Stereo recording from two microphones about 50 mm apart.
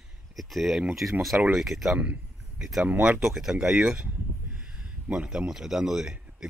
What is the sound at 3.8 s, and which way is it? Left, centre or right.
Speech, right.